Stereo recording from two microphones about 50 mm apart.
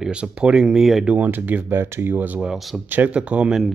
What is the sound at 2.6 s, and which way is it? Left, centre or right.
Speech, centre.